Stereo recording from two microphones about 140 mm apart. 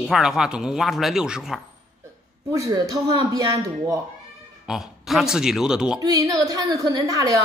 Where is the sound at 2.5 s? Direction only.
25° right (ahead or behind).